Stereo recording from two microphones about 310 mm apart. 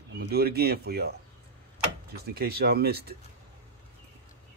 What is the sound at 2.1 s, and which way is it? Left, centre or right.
Speech, right.